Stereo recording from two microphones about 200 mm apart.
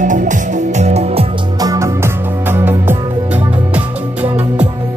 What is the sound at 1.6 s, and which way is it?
Music, 15° right (ahead or behind).